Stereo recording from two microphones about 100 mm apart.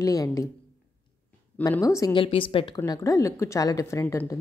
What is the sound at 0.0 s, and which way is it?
Speech, 35° left (ahead or behind).